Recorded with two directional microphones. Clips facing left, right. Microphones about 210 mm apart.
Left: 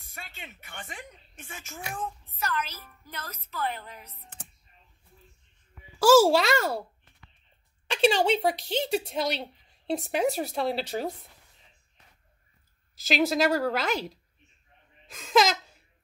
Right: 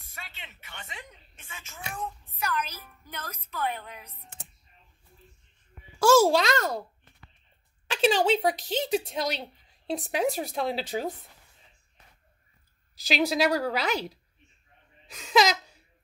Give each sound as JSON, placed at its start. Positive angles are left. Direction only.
{"t": 0.1, "sound": "speech", "side_deg": 45}
{"t": 2.3, "sound": "a woman's voice", "side_deg": -15}
{"t": 5.9, "sound": "speech", "side_deg": 5}
{"t": 7.9, "sound": "speech", "side_deg": 0}
{"t": 13.0, "sound": "speech", "side_deg": 0}